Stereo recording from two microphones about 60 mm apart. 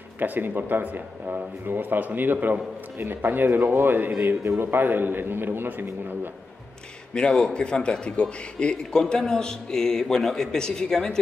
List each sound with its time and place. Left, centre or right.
0.2 s speech: right
7.2 s a man's voice: centre